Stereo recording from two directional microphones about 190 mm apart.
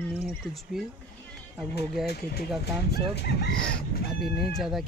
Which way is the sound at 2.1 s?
55° left (ahead or behind).